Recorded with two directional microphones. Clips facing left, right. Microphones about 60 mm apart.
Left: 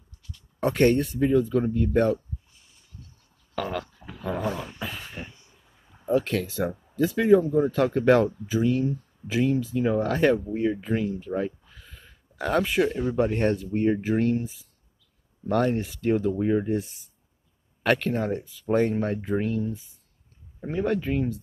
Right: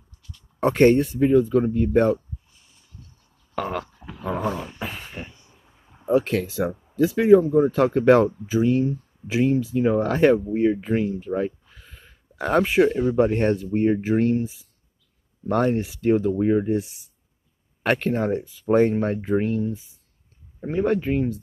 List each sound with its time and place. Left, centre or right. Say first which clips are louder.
0.6 s speech: right 4 dB; right
3.5 s speech: right 3 dB; right
3.8 s wild animals: right 3 dB; centre
4.2 s dog: right 3 dB; right
4.7 s a sound: right 2 dB; right
7.0 s speech: right 4 dB; centre
17.8 s speech: right 2 dB; right